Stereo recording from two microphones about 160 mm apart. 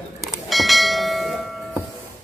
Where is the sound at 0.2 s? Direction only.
Centre (ahead or behind).